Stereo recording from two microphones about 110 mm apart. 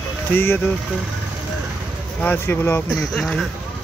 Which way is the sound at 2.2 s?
20° left (ahead or behind).